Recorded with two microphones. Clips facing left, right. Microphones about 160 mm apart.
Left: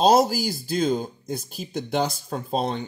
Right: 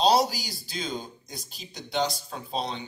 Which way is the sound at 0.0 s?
45° left (ahead or behind).